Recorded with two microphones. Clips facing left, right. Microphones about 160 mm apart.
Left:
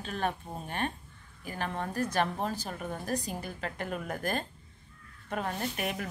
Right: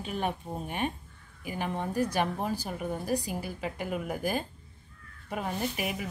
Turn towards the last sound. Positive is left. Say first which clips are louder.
# right 1 dB
turn(degrees=-5)  # may be behind; listen again after turning